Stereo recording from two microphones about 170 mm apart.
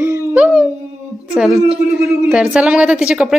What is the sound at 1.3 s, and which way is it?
A woman's voice, 5° right (ahead or behind).